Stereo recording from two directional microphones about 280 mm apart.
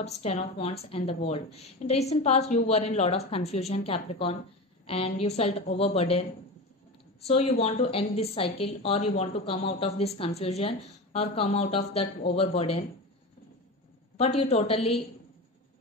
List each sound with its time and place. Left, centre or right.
0.0 s a woman's voice: left
7.2 s a woman's voice: left
14.1 s a woman's voice: left